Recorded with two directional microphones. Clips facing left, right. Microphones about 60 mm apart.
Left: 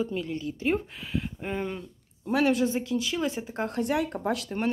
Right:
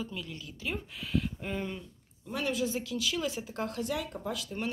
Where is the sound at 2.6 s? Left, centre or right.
Left.